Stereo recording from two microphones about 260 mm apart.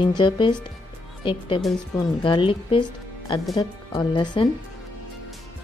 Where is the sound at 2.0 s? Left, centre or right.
Centre.